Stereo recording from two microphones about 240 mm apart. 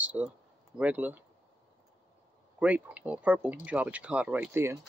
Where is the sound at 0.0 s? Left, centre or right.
Centre.